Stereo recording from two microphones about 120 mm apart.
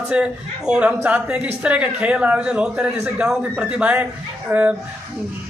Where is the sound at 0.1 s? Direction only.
5° right (ahead or behind).